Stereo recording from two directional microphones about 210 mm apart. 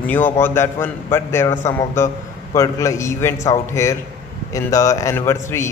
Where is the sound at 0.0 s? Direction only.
10° left (ahead or behind).